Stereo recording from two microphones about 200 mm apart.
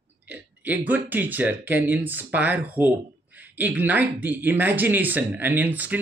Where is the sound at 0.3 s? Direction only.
10° right (ahead or behind).